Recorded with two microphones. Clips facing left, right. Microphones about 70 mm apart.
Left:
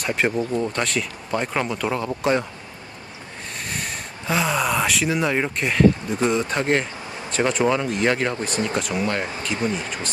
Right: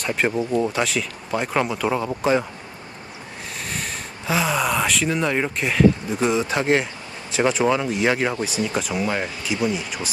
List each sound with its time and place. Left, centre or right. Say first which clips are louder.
0.0 s speech: even; centre
0.4 s speech: right 2 dB; centre
0.7 s speech: right 1 dB; centre
3.5 s speech: even; centre
9.6 s speech: right 2 dB; left